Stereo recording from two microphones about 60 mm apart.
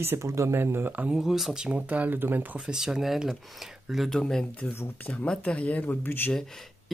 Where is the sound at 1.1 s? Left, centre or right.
Centre.